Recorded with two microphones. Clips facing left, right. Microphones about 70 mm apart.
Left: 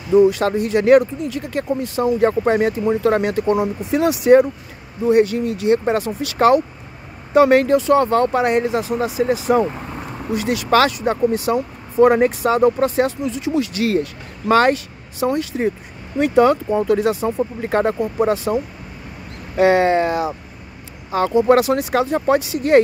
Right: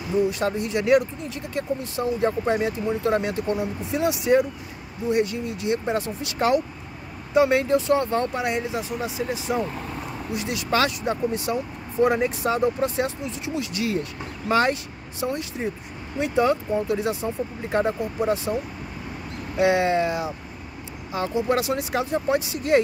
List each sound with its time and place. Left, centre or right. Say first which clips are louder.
0.3 s speech: left 6 dB; left
0.7 s speech: left 7 dB; left
1.2 s speech: left 6 dB; left
10.3 s speech: left 8 dB; left
12.0 s speech: left 8 dB; left
19.5 s speech: left 6 dB; left
21.1 s speech: left 9 dB; left